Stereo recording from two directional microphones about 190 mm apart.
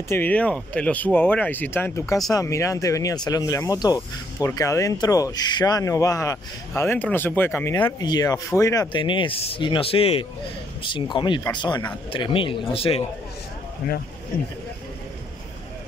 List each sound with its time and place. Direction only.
0.1 s speech: 10° left (ahead or behind); by 13.0 s 30° left (ahead or behind)